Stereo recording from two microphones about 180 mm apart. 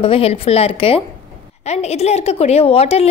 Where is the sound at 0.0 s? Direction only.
30° left (ahead or behind).